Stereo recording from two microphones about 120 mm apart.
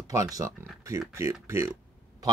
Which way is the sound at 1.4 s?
25° right (ahead or behind).